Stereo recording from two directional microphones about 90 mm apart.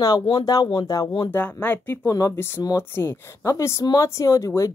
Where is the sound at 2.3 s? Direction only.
25° left (ahead or behind).